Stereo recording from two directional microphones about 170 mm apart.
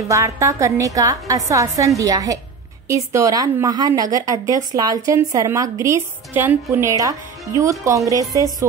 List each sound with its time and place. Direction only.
0.1 s speech: 20° right (ahead or behind)